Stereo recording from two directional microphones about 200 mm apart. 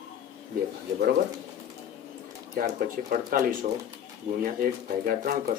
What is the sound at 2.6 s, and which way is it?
Speech, 45° right (ahead or behind).